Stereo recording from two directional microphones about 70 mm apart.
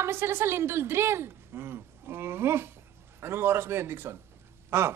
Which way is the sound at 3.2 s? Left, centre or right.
Right.